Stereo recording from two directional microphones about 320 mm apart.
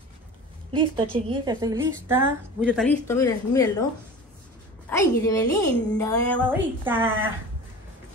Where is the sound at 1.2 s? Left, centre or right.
Centre.